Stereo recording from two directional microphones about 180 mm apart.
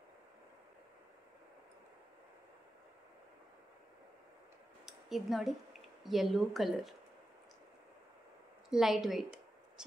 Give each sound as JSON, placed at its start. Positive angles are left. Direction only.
{"t": 4.8, "sound": "speech", "side_deg": 0}
{"t": 8.6, "sound": "a woman's voice", "side_deg": 0}